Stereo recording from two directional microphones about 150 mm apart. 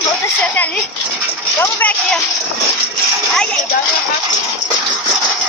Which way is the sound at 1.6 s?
10° left (ahead or behind).